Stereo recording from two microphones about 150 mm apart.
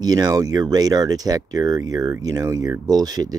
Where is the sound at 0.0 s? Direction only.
25° right (ahead or behind).